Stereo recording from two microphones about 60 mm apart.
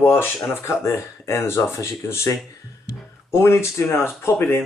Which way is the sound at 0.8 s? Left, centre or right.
Left.